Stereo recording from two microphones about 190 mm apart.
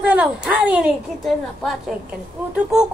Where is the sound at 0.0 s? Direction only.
10° right (ahead or behind).